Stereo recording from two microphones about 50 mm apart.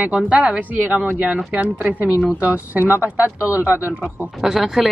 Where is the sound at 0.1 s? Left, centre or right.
Centre.